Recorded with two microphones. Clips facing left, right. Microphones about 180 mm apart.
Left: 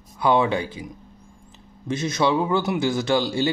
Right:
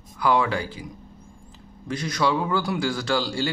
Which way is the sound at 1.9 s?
25° left (ahead or behind).